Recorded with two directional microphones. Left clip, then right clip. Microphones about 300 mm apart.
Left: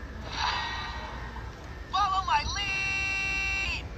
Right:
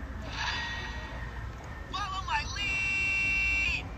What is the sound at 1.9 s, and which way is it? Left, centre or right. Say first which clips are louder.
Vehicle: left 7 dB; centre.